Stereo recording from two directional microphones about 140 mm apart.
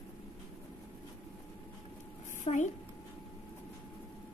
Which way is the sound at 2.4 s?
60° left (ahead or behind).